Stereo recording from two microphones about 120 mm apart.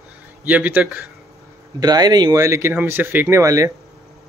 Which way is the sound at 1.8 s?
35° right (ahead or behind).